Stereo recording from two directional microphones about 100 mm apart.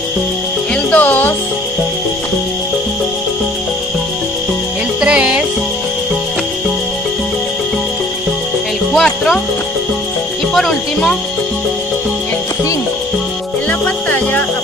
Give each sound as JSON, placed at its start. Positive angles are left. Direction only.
{"t": 0.9, "sound": "music", "side_deg": 15}
{"t": 5.0, "sound": "music", "side_deg": -10}
{"t": 8.9, "sound": "music", "side_deg": 5}
{"t": 10.5, "sound": "speech", "side_deg": 5}
{"t": 13.7, "sound": "music", "side_deg": 20}